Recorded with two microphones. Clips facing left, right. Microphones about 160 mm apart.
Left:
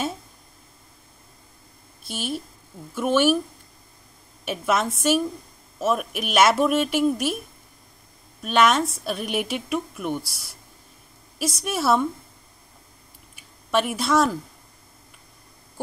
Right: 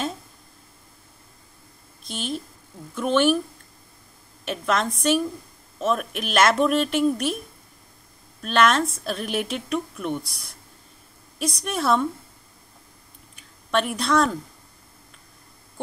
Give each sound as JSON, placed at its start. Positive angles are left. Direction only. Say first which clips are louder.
{"t": 2.0, "sound": "a woman's voice", "louder": "even", "side_deg": 5}
{"t": 4.5, "sound": "a woman's voice", "louder": "left 1 dB", "side_deg": 5}
{"t": 8.4, "sound": "a woman's voice", "louder": "even", "side_deg": 0}
{"t": 13.4, "sound": "speech", "louder": "left 1 dB", "side_deg": 5}